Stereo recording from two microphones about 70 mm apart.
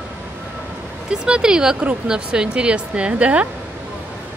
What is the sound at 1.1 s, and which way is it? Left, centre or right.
Speech, centre.